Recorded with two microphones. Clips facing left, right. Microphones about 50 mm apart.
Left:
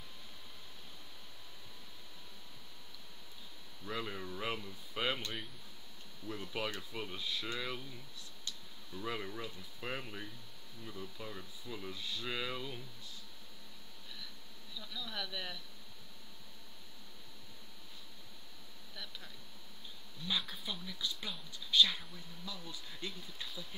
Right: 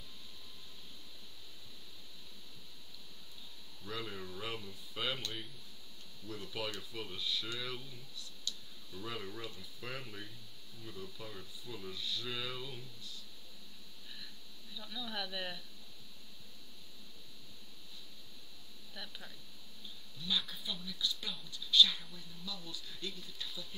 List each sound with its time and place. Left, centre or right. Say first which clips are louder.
3.8 s speech: left 2 dB; left
14.8 s speech: right 1 dB; centre
18.9 s speech: right 1 dB; centre
20.2 s speech: even; centre